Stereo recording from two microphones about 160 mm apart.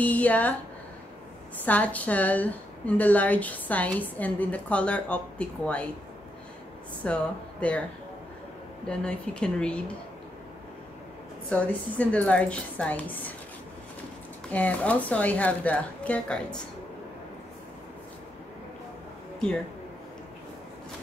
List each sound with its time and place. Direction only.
0.0 s a woman's voice: 10° left (ahead or behind)
1.6 s a woman's voice: 10° left (ahead or behind)
7.0 s a woman's voice: 5° left (ahead or behind)
8.8 s speech: 5° left (ahead or behind)
11.4 s a woman's voice: 10° left (ahead or behind)
14.5 s a woman's voice: 10° left (ahead or behind)